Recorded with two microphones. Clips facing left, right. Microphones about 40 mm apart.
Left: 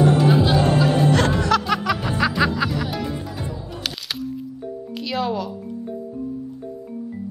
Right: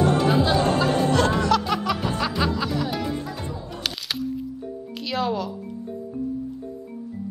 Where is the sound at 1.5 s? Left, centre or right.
Left.